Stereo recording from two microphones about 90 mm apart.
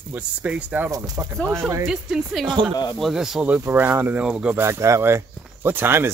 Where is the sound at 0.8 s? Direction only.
45° right (ahead or behind).